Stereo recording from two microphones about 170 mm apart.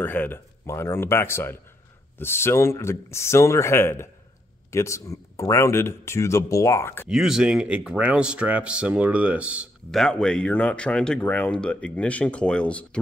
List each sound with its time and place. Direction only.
0.0 s speech: 10° left (ahead or behind)
7.1 s speech: centre (ahead or behind)
9.8 s speech: 5° left (ahead or behind)